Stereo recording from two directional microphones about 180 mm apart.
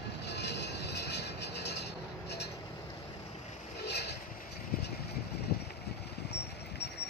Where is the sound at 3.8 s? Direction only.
70° left (ahead or behind).